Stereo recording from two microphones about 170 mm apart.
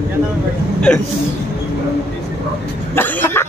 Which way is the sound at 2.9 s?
10° left (ahead or behind).